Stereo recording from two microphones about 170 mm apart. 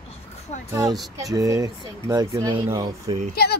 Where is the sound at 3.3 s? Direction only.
70° left (ahead or behind).